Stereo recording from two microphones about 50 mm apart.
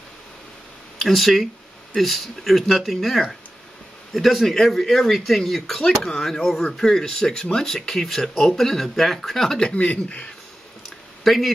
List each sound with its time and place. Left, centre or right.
0.9 s speech: centre
9.8 s speech: left
11.2 s speech: centre